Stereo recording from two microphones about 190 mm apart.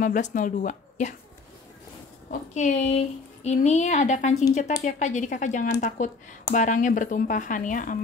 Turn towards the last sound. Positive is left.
turn(degrees=45)  # may be behind; listen again after turning